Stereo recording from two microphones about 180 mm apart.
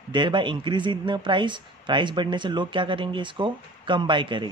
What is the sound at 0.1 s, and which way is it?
Speech, 25° right (ahead or behind).